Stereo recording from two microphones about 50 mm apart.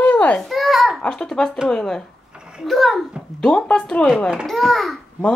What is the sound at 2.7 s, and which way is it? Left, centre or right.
Speech, centre.